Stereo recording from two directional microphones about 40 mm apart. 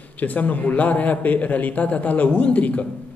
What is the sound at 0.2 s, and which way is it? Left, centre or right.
A man's voice, left.